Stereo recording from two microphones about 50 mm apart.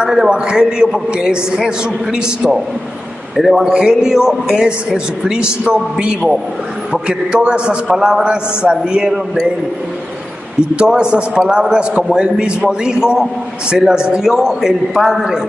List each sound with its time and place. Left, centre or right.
0.0 s a man's voice: centre
3.3 s a man's voice: centre
3.6 s a man's voice: centre
10.9 s a man's voice: centre